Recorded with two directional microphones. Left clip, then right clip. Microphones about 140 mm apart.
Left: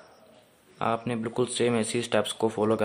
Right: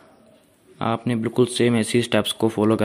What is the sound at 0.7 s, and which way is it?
A man's voice, 30° right (ahead or behind).